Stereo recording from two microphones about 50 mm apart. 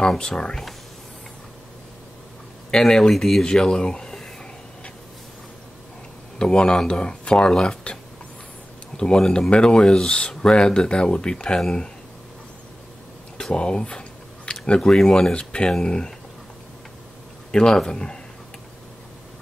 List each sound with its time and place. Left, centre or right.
0.0 s speech: centre
2.7 s speech: centre
6.3 s speech: centre
13.4 s a sound: centre
15.3 s speech: left
17.5 s speech: centre